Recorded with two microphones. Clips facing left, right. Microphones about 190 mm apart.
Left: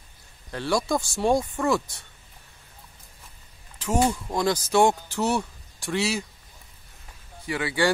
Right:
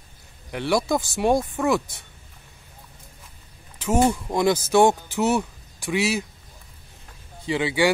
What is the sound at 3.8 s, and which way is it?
Speech, 20° right (ahead or behind).